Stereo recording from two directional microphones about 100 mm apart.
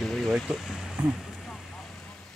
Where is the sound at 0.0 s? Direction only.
5° left (ahead or behind).